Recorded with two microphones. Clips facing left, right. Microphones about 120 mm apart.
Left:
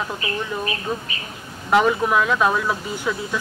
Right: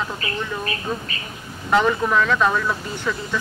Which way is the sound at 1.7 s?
5° left (ahead or behind).